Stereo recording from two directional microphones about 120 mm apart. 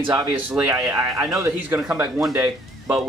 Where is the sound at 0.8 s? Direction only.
25° right (ahead or behind).